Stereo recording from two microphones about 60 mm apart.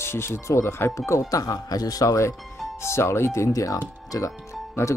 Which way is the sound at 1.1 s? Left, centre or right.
Left.